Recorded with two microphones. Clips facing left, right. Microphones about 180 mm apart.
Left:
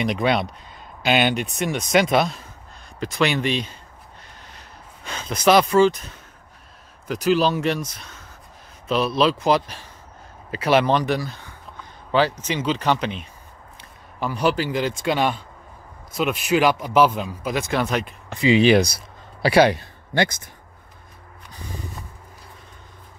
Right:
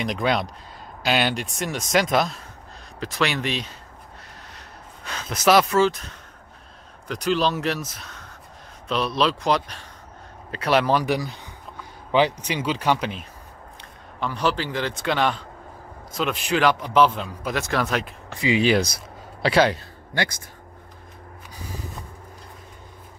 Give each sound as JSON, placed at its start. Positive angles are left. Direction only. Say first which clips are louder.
{"t": 0.0, "sound": "speech", "louder": "left 2 dB", "side_deg": 0}
{"t": 13.7, "sound": "a man's voice", "louder": "left 2 dB", "side_deg": 10}
{"t": 18.3, "sound": "a man's voice", "louder": "left 4 dB", "side_deg": 25}